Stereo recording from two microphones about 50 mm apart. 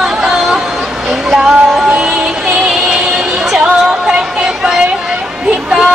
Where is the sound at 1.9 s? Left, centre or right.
Centre.